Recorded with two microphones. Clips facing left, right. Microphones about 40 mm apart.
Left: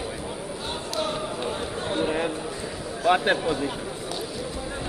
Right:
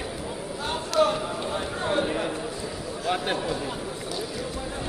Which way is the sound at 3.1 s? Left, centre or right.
Left.